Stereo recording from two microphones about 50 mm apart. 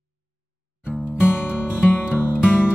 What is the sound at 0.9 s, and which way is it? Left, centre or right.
Music, centre.